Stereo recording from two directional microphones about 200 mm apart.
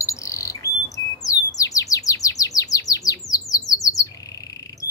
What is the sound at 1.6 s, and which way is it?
Chirp, 15° left (ahead or behind).